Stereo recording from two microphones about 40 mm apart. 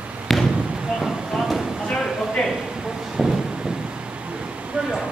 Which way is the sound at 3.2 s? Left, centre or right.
Centre.